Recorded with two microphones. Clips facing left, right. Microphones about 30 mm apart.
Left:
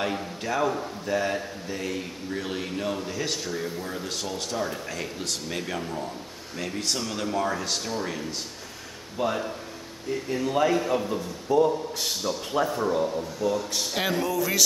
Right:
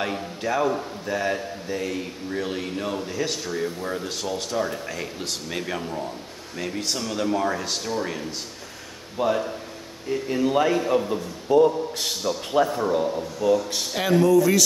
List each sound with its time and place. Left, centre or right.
0.0 s a man's voice: centre
10.3 s speech: right
10.7 s a man's voice: centre
11.5 s speech: right
12.6 s a man's voice: centre
13.4 s a man's voice: centre